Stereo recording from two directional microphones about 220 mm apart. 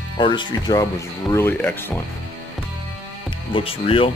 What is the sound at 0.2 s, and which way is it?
Speech, 20° left (ahead or behind).